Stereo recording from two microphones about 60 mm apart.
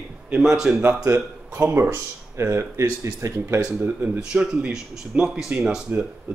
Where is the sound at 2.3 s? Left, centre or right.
Right.